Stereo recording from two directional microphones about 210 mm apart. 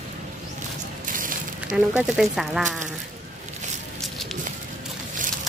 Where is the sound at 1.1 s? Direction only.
40° right (ahead or behind).